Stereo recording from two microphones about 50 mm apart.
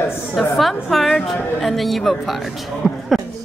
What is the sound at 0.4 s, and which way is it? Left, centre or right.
A man's voice, centre.